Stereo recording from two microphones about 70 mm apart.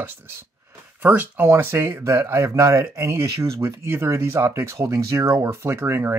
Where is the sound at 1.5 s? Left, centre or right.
Right.